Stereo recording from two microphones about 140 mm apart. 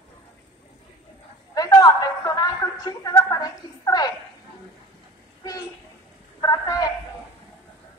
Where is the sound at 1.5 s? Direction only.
25° left (ahead or behind).